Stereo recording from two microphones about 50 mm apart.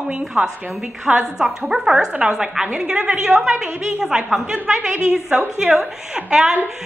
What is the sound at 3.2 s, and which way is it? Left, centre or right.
A woman's voice, centre.